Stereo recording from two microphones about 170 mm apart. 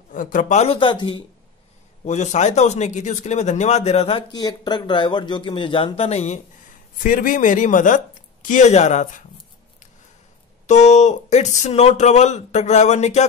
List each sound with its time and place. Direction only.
0.1 s speech: 50° left (ahead or behind); by 1.2 s 30° left (ahead or behind)
2.0 s speech: 45° left (ahead or behind)
4.3 s speech: 25° left (ahead or behind); by 6.4 s 40° left (ahead or behind)
7.0 s speech: 55° left (ahead or behind)
10.7 s speech: 45° left (ahead or behind)